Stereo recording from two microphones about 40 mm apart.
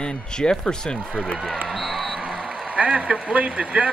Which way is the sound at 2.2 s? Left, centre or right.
Right.